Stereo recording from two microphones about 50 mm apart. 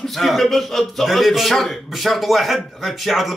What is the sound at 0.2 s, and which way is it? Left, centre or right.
A man's voice, centre.